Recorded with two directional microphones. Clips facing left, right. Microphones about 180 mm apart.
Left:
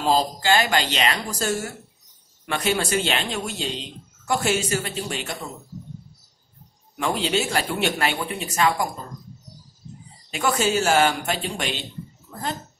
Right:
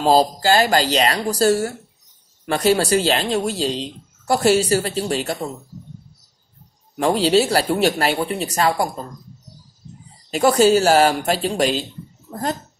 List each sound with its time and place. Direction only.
0.0 s speech: 35° right (ahead or behind)
7.0 s speech: 35° right (ahead or behind)
10.3 s speech: 35° right (ahead or behind)